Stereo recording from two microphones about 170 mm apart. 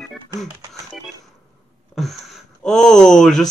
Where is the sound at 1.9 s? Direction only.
Centre (ahead or behind).